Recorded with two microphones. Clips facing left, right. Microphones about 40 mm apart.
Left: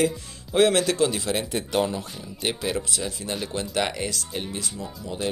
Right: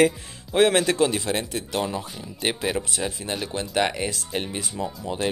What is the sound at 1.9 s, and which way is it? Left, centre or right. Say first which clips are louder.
Speech: right 1 dB; centre.